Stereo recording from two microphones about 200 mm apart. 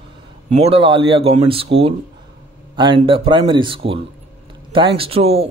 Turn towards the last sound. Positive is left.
turn(degrees=-30)  # may be behind; listen again after turning